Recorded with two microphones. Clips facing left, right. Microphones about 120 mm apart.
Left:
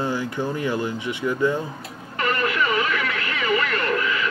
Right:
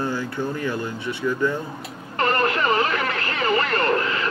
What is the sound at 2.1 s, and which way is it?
Radio, 35° right (ahead or behind).